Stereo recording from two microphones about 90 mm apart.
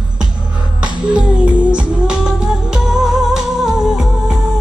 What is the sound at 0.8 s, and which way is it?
Music, 15° right (ahead or behind).